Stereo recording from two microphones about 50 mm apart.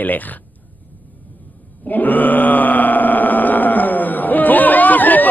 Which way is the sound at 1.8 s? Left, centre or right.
Left.